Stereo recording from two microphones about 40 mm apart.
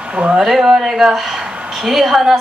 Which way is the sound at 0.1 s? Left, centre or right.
Right.